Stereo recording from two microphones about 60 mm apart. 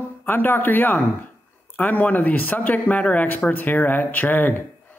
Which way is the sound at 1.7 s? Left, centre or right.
Left.